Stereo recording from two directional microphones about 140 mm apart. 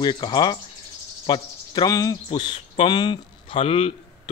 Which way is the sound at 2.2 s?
35° left (ahead or behind).